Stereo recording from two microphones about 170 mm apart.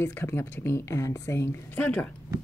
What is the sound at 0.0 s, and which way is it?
Speech, 15° left (ahead or behind).